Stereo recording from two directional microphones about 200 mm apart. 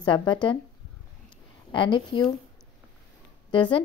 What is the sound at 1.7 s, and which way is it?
Speech, 25° left (ahead or behind).